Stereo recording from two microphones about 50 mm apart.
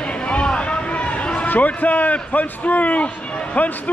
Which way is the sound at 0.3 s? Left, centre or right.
Left.